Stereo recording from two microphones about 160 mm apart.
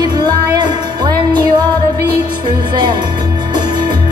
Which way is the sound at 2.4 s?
30° right (ahead or behind).